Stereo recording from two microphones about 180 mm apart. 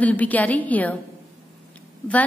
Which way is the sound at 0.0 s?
10° left (ahead or behind).